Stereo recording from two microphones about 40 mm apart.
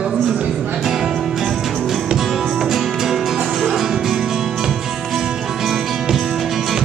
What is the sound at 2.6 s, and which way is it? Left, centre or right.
Music, centre.